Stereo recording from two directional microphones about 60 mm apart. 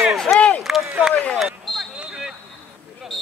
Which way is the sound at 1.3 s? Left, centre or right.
Centre.